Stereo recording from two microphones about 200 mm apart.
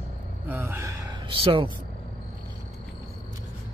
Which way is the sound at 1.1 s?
25° right (ahead or behind).